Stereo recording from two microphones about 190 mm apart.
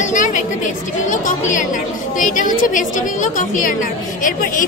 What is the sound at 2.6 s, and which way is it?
Speech, 45° left (ahead or behind).